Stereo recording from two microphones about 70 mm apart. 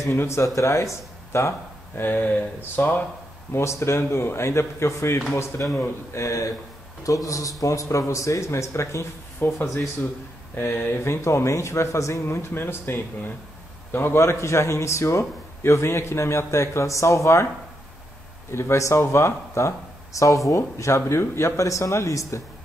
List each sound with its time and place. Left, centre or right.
0.2 s a man's voice: left
2.0 s speech: left
3.5 s a man's voice: left
10.5 s a man's voice: left
18.5 s speech: left